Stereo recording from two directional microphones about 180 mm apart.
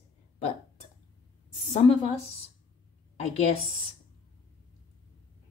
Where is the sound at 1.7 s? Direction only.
35° left (ahead or behind).